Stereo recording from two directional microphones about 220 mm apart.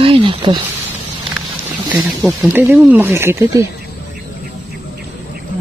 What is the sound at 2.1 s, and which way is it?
Speech, 10° right (ahead or behind).